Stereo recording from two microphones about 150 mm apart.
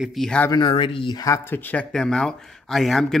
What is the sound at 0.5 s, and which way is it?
Speech, 35° left (ahead or behind).